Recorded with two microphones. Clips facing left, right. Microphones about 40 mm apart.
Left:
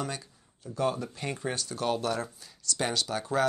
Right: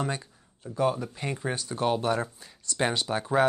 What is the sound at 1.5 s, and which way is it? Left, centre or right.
Speech, right.